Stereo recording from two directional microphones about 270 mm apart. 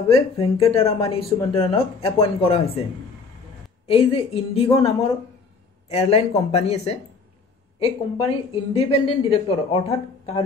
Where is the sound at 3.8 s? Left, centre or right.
Left.